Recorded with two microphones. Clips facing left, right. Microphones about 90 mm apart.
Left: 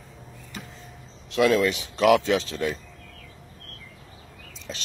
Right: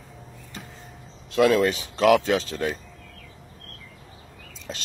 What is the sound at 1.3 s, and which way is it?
Speech, 50° right (ahead or behind).